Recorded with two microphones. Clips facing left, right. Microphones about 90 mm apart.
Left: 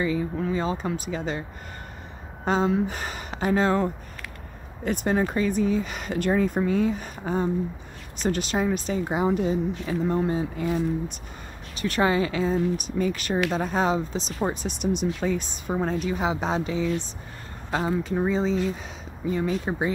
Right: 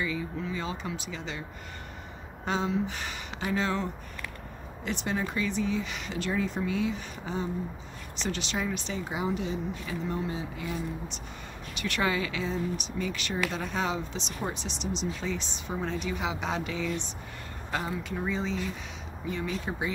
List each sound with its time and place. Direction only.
0.0 s speech: 40° left (ahead or behind)
2.4 s speech: 45° left (ahead or behind)
11.8 s speech: 35° left (ahead or behind)